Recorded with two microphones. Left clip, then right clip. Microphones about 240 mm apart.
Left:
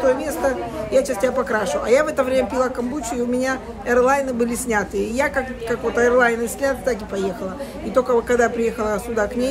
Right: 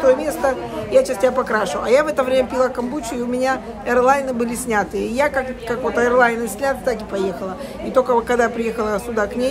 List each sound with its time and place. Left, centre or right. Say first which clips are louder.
0.0 s speech: right 3 dB; centre